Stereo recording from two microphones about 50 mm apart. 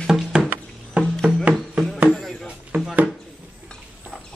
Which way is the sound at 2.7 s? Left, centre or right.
Right.